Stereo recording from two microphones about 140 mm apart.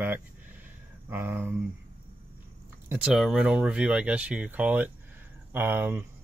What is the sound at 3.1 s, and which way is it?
Speech, centre (ahead or behind).